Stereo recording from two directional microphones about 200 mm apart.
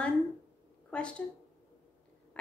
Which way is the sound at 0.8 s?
5° left (ahead or behind).